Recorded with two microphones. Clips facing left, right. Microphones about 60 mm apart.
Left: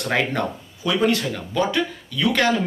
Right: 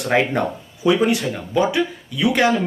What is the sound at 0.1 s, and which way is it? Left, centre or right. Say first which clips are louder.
A man's voice: right 4 dB; centre.